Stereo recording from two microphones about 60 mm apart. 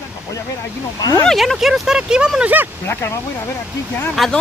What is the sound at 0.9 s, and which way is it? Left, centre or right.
Speech, left.